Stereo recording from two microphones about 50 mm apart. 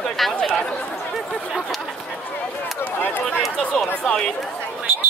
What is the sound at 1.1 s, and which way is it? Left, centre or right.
Speech, centre.